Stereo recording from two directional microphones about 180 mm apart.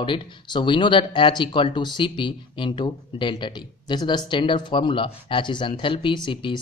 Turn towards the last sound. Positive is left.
turn(degrees=25)  # may be behind; listen again after turning